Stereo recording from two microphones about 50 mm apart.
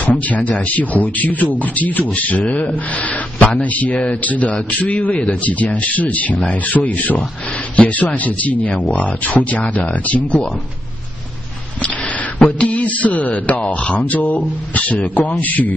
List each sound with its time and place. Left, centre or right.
0.0 s speech: left
12.5 s speech: left